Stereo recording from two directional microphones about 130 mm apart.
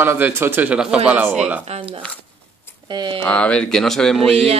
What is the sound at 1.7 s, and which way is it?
Speech, 55° right (ahead or behind).